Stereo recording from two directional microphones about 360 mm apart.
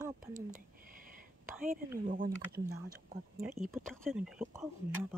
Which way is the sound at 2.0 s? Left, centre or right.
Right.